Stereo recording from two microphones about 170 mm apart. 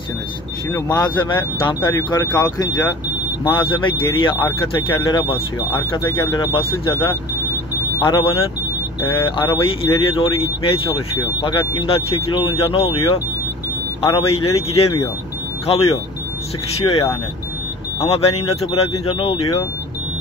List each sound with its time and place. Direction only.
0.7 s speech: 20° left (ahead or behind)
9.4 s speech: 20° left (ahead or behind)
10.1 s speech: 30° left (ahead or behind)
15.6 s speech: 35° left (ahead or behind)